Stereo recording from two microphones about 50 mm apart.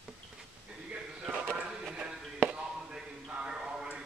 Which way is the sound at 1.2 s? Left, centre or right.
Centre.